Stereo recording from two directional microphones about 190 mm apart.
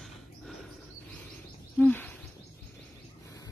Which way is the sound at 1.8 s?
10° left (ahead or behind).